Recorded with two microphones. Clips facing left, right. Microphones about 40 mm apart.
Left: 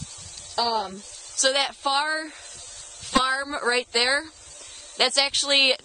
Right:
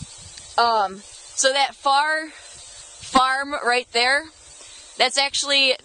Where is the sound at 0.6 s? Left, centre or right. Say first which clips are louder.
Right 7 dB; right.